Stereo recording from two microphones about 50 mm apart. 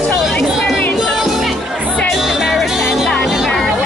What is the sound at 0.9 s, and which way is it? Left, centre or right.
Music, centre.